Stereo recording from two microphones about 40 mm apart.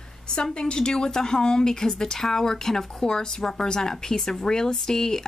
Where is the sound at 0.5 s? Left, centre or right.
Left.